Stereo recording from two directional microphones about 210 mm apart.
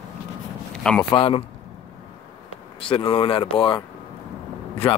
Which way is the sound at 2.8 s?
25° left (ahead or behind).